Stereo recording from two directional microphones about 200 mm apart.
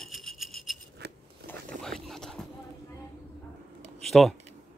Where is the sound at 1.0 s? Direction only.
55° right (ahead or behind).